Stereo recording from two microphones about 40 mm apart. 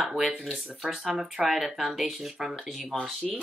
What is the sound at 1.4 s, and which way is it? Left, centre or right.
Speech, centre.